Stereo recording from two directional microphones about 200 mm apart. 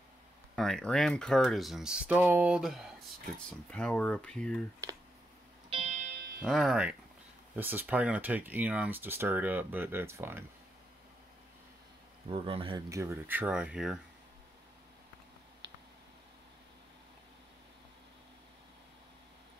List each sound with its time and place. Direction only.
0.6 s speech: 5° left (ahead or behind)
5.7 s music: 30° right (ahead or behind)
6.4 s speech: centre (ahead or behind)
12.3 s speech: 30° right (ahead or behind); by 13.9 s 5° right (ahead or behind)